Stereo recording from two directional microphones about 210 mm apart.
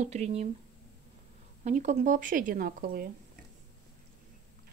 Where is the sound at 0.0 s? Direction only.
30° right (ahead or behind).